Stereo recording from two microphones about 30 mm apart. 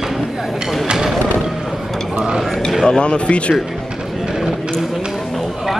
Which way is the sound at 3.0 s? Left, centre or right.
Left.